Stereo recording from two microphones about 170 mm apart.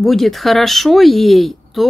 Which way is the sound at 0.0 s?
Centre (ahead or behind).